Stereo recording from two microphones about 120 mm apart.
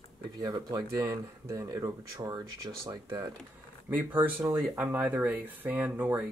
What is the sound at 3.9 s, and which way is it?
Speech, 15° right (ahead or behind).